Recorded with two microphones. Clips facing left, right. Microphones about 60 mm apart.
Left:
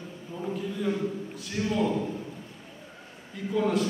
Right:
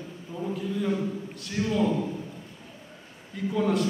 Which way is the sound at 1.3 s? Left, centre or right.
Centre.